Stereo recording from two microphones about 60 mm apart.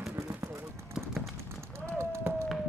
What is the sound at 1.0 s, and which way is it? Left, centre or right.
Clip-clop, centre.